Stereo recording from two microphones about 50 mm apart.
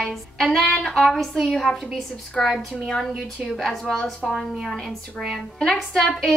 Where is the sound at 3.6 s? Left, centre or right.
Centre.